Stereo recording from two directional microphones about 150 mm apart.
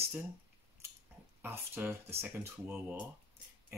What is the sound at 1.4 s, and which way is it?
Speech, 15° right (ahead or behind).